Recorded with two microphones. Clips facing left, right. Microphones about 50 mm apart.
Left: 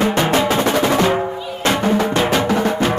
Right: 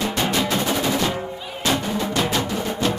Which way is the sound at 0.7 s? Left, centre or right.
Left.